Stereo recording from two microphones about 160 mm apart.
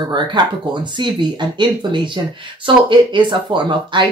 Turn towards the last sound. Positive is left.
turn(degrees=-30)  # may be behind; listen again after turning